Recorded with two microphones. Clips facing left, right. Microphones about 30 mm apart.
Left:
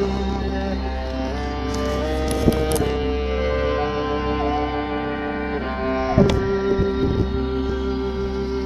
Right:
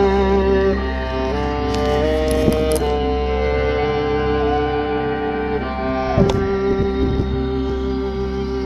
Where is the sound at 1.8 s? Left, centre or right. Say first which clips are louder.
Right 6 dB; right.